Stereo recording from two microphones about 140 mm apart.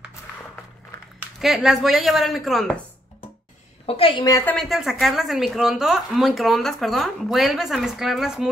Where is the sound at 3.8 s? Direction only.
40° left (ahead or behind).